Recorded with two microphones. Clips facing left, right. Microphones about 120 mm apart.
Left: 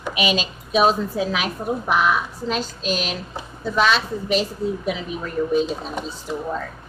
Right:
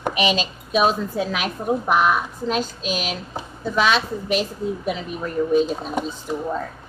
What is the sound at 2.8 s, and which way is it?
A woman's voice, 5° right (ahead or behind).